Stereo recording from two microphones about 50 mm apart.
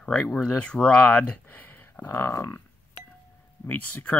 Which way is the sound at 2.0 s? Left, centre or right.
Left.